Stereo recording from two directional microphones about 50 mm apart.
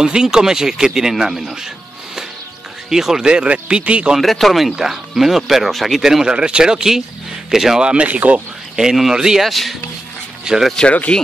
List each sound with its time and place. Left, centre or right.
0.0 s speech: centre
2.9 s speech: centre
3.3 s a man's voice: right
4.2 s speech: centre
6.2 s speech: centre
7.8 s a man's voice: right
8.7 s speech: centre
9.4 s speech: centre
10.5 s speech: centre
10.9 s speech: left